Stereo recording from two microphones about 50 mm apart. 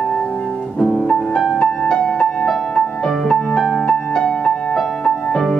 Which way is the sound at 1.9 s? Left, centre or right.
Centre.